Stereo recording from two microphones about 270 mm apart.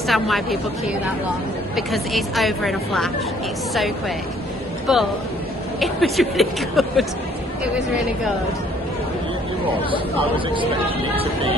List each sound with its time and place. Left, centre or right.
0.0 s a woman's voice: centre
1.8 s a woman's voice: centre
4.9 s a woman's voice: centre
10.3 s speech: centre